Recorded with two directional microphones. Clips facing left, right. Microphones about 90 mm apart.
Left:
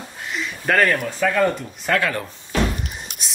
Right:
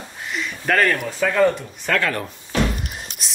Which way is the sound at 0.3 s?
Centre (ahead or behind).